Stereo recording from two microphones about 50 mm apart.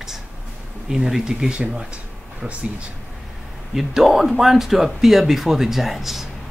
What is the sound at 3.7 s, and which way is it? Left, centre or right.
Speech, centre.